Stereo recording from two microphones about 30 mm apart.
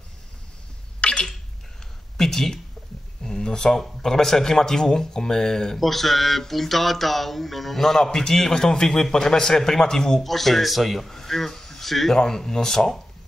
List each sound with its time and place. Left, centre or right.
1.0 s a sound: left
2.1 s speech: centre
3.3 s a sound: centre
4.0 s a man's voice: centre
5.8 s a man's voice: centre
10.2 s speech: centre
12.1 s a man's voice: centre